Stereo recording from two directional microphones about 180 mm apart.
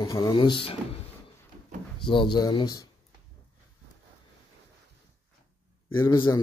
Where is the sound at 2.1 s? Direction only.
25° left (ahead or behind).